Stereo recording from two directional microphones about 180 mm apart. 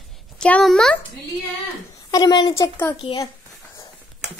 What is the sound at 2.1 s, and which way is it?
Speech, 20° left (ahead or behind).